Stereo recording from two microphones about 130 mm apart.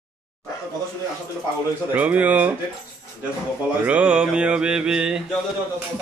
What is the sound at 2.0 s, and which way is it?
Mantra, 10° right (ahead or behind).